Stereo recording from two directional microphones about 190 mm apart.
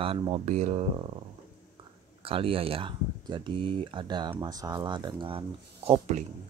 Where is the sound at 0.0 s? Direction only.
30° right (ahead or behind).